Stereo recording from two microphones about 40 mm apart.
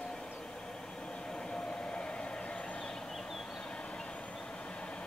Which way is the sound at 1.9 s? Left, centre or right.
Left.